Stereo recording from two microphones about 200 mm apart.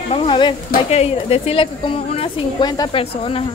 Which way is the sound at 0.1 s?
25° left (ahead or behind).